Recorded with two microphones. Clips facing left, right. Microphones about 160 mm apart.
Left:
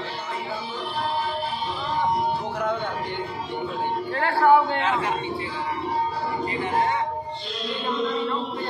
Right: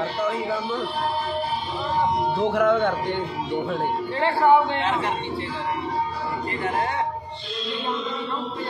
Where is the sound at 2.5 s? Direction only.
90° right.